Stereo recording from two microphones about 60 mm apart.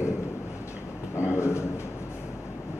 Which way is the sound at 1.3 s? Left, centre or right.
Left.